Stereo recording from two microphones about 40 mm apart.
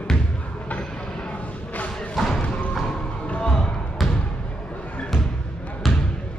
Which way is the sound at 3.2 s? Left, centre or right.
Left.